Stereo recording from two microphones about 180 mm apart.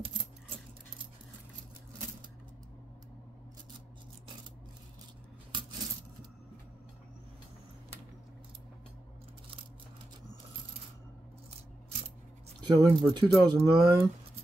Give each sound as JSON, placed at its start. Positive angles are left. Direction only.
{"t": 12.5, "sound": "speech", "side_deg": -20}